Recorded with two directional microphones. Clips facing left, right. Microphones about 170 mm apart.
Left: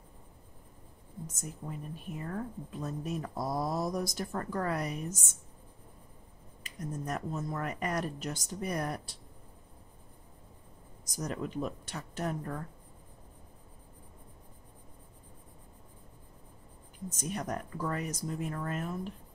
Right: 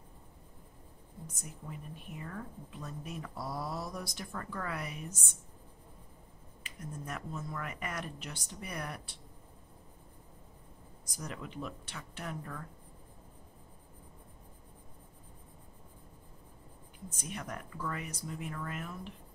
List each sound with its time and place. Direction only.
1.2 s a woman's voice: 40° left (ahead or behind)
6.6 s a woman's voice: 40° left (ahead or behind)
11.1 s a woman's voice: 40° left (ahead or behind)
17.1 s a woman's voice: 40° left (ahead or behind)